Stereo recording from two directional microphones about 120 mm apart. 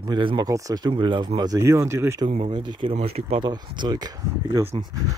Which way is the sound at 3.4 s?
35° right (ahead or behind).